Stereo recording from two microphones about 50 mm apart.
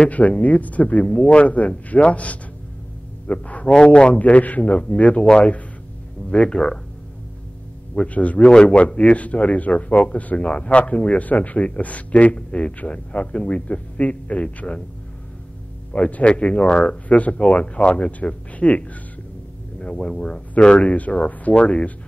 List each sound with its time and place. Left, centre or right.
0.1 s speech: left; by 6.8 s centre
7.9 s speech: left
15.9 s speech: left